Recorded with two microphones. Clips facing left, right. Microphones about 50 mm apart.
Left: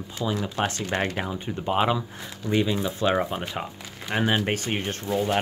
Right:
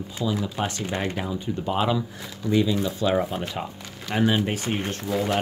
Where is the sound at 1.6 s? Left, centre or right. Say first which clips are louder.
Left 1 dB; left.